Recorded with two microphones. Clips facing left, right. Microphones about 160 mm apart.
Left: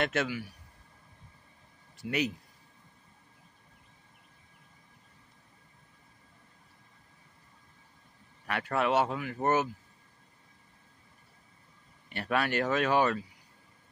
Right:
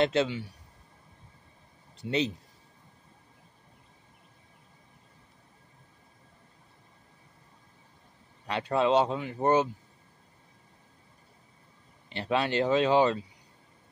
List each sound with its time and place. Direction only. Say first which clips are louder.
0.0 s speech: right 5 dB; 25° right (ahead or behind)
2.0 s speech: right 3 dB; 25° right (ahead or behind)
8.5 s speech: right 4 dB; 20° right (ahead or behind)
12.1 s speech: right 2 dB; 25° right (ahead or behind)